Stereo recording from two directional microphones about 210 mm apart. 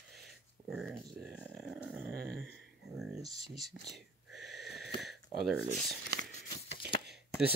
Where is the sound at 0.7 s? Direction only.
5° right (ahead or behind).